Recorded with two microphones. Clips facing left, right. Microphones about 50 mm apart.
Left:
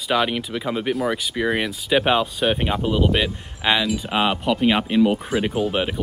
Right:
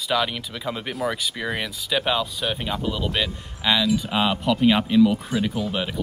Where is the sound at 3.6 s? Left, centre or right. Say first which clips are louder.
Left 2 dB; left.